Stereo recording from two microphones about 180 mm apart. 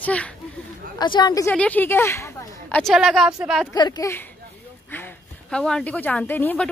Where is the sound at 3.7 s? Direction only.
20° left (ahead or behind).